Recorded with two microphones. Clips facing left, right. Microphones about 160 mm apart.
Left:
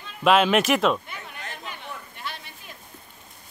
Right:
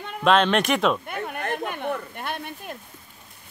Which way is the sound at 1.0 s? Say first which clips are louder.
Right 10 dB; 55° right (ahead or behind).